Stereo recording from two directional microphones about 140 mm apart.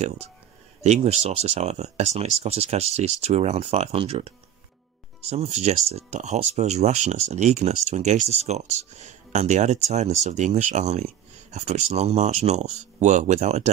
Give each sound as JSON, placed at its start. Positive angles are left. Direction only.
{"t": 0.8, "sound": "speech", "side_deg": -50}
{"t": 5.3, "sound": "speech", "side_deg": -50}